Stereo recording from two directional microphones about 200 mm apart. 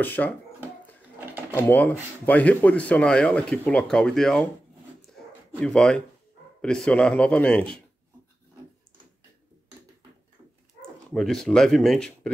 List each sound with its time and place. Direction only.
0.0 s speech: 10° left (ahead or behind)
1.5 s speech: 10° left (ahead or behind)
5.1 s a sound: 5° left (ahead or behind)
6.6 s speech: 5° left (ahead or behind)
11.1 s speech: centre (ahead or behind)